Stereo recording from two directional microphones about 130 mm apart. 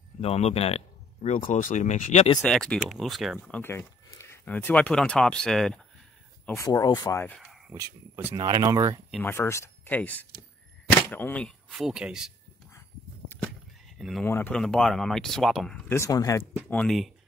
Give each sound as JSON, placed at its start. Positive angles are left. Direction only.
{"t": 0.2, "sound": "speech", "side_deg": 55}
{"t": 2.4, "sound": "speech", "side_deg": 5}
{"t": 3.6, "sound": "speech", "side_deg": 20}
{"t": 6.4, "sound": "speech", "side_deg": 20}
{"t": 7.2, "sound": "a sound", "side_deg": 0}
{"t": 8.4, "sound": "speech", "side_deg": -30}
{"t": 9.2, "sound": "speech", "side_deg": 20}
{"t": 11.7, "sound": "speech", "side_deg": -5}
{"t": 13.8, "sound": "sheep", "side_deg": 0}
{"t": 14.2, "sound": "speech", "side_deg": 15}
{"t": 14.6, "sound": "speech", "side_deg": 5}
{"t": 15.9, "sound": "speech", "side_deg": 25}
{"t": 16.6, "sound": "speech", "side_deg": 5}